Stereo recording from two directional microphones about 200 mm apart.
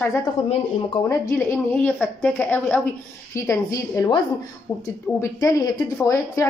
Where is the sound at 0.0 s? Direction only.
15° left (ahead or behind).